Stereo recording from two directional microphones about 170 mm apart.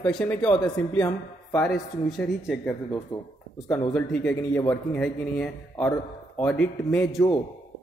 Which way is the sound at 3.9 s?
10° left (ahead or behind).